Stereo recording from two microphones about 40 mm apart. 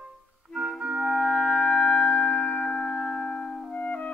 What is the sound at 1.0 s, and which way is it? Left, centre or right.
Music, centre.